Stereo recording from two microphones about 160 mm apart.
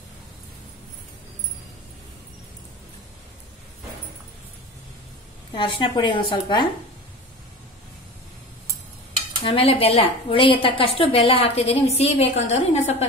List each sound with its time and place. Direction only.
5.5 s a woman's voice: 30° left (ahead or behind)
9.4 s a woman's voice: 35° left (ahead or behind)